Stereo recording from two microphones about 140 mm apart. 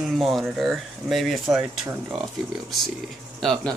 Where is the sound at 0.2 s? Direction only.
Centre (ahead or behind).